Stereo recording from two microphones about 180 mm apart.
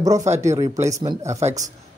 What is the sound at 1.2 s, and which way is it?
Speech, 35° right (ahead or behind).